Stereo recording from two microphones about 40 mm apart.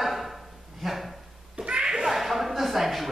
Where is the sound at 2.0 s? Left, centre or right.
Centre.